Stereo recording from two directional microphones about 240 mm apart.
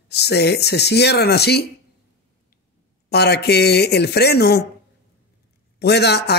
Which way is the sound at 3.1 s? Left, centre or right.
Left.